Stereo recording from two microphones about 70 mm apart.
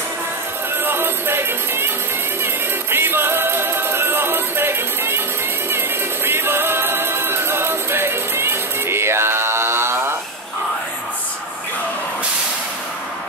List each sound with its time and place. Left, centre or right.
0.8 s music: right